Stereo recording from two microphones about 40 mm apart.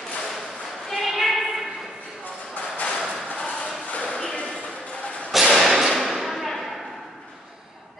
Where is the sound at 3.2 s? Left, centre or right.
Left.